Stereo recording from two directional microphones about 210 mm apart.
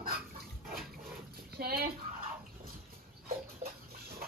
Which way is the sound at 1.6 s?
45° right (ahead or behind).